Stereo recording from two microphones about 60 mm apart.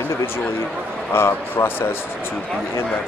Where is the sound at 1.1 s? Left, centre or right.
Left.